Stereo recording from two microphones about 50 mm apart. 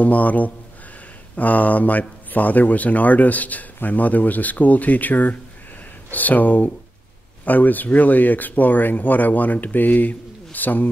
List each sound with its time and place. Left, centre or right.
0.0 s speech: left